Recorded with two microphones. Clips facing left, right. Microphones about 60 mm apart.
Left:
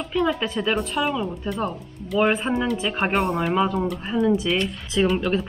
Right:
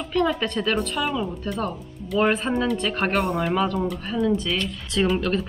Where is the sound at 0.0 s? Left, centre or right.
Centre.